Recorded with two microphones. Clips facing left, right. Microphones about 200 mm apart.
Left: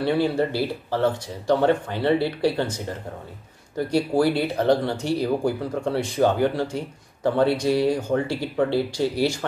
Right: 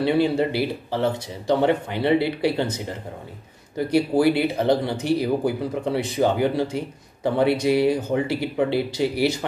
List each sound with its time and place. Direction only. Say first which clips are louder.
0.0 s speech: right 2 dB; 15° right (ahead or behind)
3.7 s speech: right 2 dB; 15° right (ahead or behind)